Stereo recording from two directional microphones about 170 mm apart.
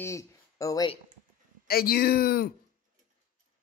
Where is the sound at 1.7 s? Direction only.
65° left (ahead or behind).